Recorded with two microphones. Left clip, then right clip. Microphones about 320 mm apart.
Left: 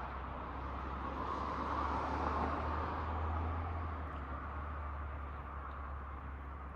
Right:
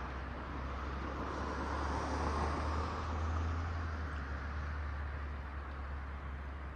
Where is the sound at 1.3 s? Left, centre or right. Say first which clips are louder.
Left 2 dB; left.